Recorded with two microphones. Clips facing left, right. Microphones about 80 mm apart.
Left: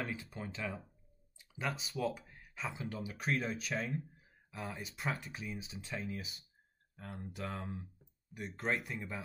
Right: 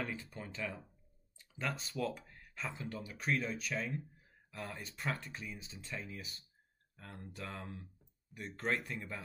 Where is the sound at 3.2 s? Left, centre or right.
Left.